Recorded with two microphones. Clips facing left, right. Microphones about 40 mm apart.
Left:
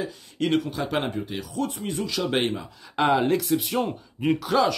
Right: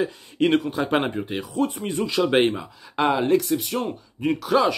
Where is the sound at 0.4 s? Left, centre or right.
Right.